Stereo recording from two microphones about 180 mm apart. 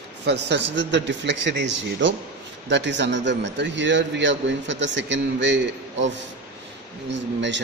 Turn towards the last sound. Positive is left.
turn(degrees=-85)